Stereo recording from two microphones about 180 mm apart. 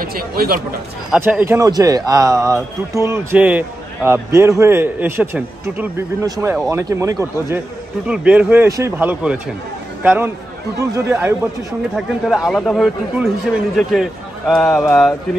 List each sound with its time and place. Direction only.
0.0 s speech: 55° right (ahead or behind)
1.1 s a man's voice: 10° right (ahead or behind)
8.1 s a man's voice: 5° right (ahead or behind)
11.9 s speech: centre (ahead or behind)
14.5 s speech: centre (ahead or behind)